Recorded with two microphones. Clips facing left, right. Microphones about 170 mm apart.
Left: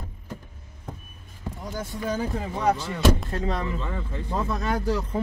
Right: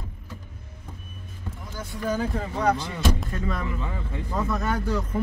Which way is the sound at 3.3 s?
30° left (ahead or behind).